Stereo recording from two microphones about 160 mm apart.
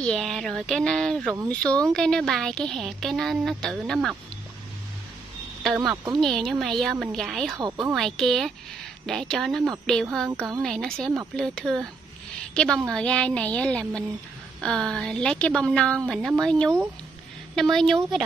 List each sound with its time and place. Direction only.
0.0 s a woman's voice: 5° left (ahead or behind)
6.2 s speech: centre (ahead or behind)
7.5 s speech: 25° right (ahead or behind)
7.9 s a woman's voice: centre (ahead or behind)